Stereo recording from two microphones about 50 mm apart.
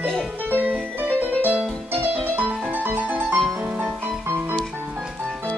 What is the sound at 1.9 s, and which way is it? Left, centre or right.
Music, right.